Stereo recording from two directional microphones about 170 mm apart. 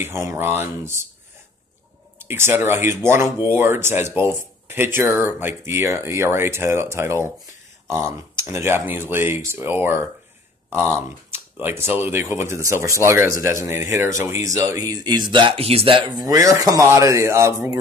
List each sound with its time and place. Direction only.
0.0 s speech: 15° right (ahead or behind)
2.1 s a man's voice: 15° right (ahead or behind)